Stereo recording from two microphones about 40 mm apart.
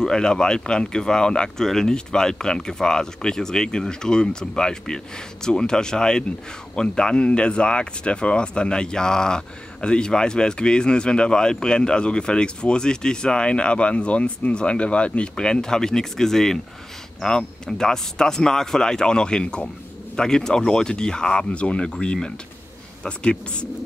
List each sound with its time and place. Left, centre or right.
0.0 s speech: centre
1.6 s speech: centre; by 23.7 s left